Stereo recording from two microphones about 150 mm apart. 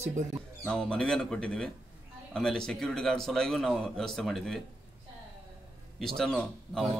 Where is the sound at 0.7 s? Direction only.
5° left (ahead or behind).